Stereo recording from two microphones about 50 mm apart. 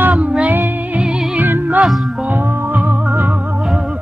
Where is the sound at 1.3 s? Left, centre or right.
Right.